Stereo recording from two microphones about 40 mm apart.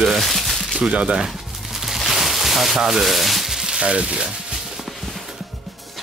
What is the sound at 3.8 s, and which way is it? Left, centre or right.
Speech, right.